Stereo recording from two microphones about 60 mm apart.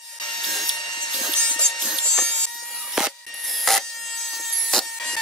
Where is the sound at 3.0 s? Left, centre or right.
Centre.